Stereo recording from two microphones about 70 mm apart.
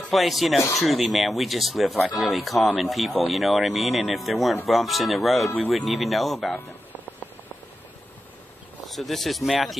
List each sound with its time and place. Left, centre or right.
0.1 s speech: centre
6.5 s a sound: left
8.8 s speech: centre